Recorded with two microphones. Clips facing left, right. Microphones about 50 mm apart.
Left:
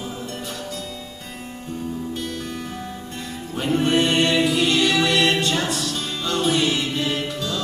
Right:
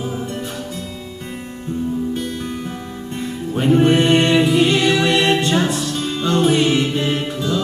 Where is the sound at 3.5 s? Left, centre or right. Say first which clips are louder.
Right 6 dB; right.